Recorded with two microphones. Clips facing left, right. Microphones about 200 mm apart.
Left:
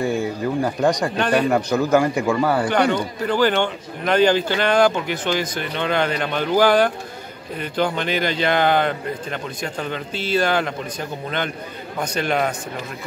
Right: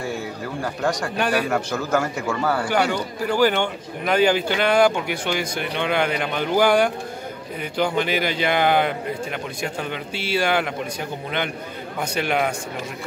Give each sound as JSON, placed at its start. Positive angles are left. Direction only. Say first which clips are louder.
{"t": 0.6, "sound": "a man's voice", "louder": "left 4 dB", "side_deg": 20}
{"t": 2.7, "sound": "speech", "louder": "left 3 dB", "side_deg": -10}